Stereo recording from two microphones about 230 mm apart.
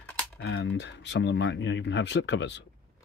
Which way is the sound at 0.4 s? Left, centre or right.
Left.